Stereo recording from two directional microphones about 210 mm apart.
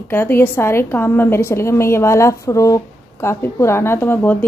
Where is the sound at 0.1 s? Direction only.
10° left (ahead or behind).